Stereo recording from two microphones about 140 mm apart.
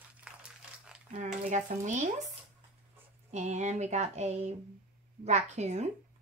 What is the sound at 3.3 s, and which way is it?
Speech, 55° right (ahead or behind).